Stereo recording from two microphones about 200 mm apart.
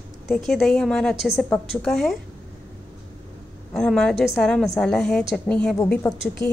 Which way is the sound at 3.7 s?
5° left (ahead or behind).